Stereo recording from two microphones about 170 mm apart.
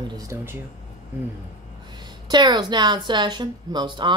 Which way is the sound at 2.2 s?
25° right (ahead or behind).